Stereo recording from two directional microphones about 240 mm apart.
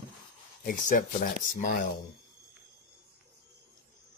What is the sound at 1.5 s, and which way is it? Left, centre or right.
Speech, left.